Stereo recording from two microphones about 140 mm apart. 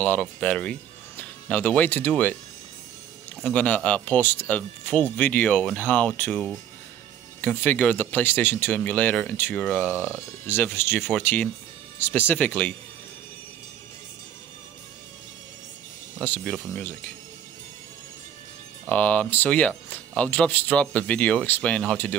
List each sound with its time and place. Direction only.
0.0 s speech: 10° left (ahead or behind)
3.4 s speech: 10° left (ahead or behind)
7.4 s speech: 10° left (ahead or behind)
10.0 s speech: 15° left (ahead or behind)
16.2 s speech: 5° left (ahead or behind)
18.9 s speech: 10° left (ahead or behind)